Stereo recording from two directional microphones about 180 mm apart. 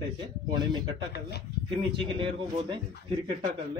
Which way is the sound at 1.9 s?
25° right (ahead or behind).